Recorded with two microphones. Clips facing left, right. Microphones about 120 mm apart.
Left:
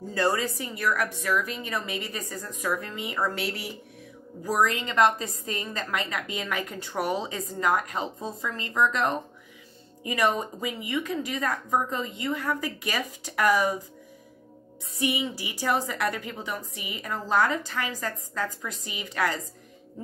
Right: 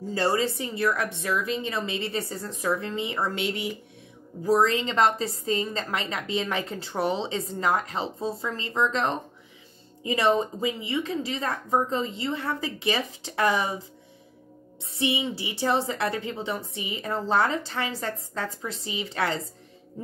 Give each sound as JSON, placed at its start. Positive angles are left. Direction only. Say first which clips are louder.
{"t": 0.1, "sound": "a woman's voice", "louder": "right 1 dB", "side_deg": -25}
{"t": 15.0, "sound": "a woman's voice", "louder": "right 1 dB", "side_deg": -30}